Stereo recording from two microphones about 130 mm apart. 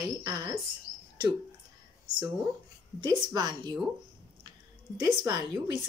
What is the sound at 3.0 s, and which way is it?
Speech, 30° right (ahead or behind).